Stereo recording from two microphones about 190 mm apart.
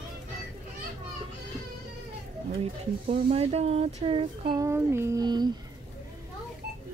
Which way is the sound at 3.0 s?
30° right (ahead or behind).